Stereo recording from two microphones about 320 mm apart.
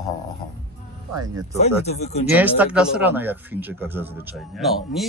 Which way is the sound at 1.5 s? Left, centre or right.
Centre.